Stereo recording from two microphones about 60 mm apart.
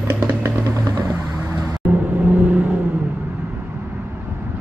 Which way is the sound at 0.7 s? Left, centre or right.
Right.